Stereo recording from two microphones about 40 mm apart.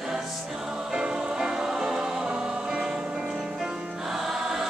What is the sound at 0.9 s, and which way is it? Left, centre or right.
Music, right.